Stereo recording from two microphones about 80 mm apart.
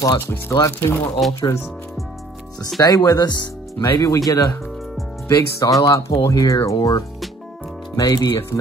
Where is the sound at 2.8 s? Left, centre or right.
Left.